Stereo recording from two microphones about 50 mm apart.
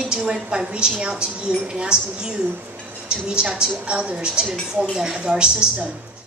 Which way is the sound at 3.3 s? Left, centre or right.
Centre.